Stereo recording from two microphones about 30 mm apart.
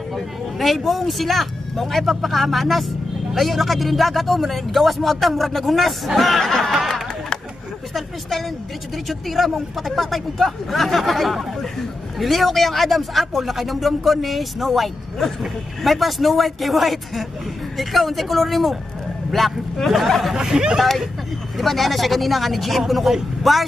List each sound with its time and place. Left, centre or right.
0.1 s speech: centre
6.4 s a sound: centre
7.9 s speech: centre
20.3 s speech: right
20.7 s speech: centre